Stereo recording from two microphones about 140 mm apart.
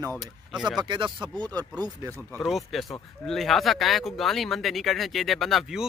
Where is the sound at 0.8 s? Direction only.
35° right (ahead or behind).